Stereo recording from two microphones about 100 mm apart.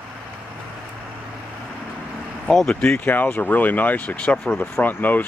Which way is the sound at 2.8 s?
20° left (ahead or behind).